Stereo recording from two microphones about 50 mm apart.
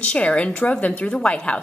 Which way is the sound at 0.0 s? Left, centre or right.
Left.